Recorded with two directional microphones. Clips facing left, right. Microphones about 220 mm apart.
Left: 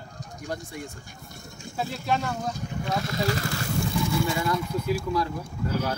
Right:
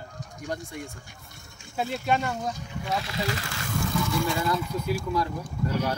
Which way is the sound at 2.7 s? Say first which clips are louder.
Left 2 dB; 45° left (ahead or behind).